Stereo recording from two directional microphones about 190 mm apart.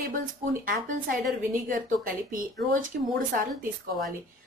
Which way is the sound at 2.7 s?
45° right (ahead or behind).